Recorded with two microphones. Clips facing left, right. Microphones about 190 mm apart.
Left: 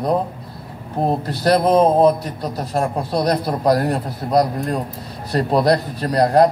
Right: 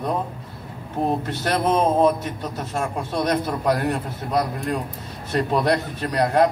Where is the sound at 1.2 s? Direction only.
35° left (ahead or behind).